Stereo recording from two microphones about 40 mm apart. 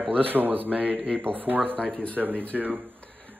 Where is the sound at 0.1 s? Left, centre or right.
Right.